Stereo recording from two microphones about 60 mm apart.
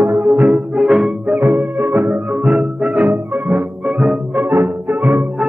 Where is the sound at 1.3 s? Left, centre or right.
Right.